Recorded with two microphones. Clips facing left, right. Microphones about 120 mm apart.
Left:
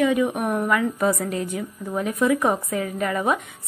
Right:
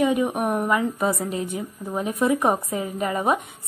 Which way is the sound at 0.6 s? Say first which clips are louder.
Left 1 dB; 20° right (ahead or behind).